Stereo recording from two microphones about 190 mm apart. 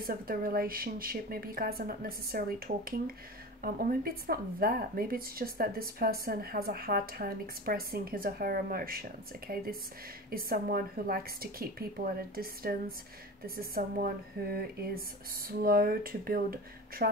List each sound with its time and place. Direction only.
0.0 s speech: 50° right (ahead or behind)